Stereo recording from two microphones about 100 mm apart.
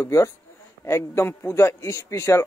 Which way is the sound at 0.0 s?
30° left (ahead or behind).